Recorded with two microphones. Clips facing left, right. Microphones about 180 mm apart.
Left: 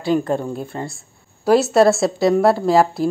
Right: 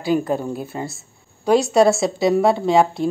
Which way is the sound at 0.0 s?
5° right (ahead or behind).